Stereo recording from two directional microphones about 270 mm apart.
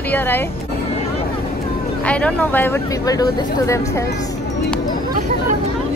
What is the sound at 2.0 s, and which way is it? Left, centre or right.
Speech, centre.